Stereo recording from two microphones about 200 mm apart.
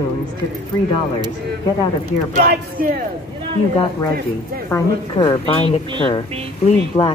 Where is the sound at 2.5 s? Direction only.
45° right (ahead or behind).